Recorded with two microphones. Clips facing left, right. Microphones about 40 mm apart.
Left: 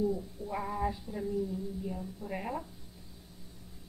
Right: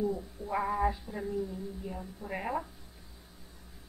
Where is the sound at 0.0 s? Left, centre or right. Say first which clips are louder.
Left 1 dB; right.